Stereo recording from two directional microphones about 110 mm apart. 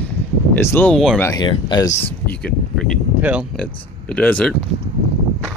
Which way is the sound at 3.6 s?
10° left (ahead or behind).